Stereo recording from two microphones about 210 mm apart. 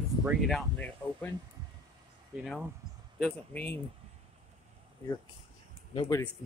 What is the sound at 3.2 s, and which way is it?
Speech, 5° left (ahead or behind).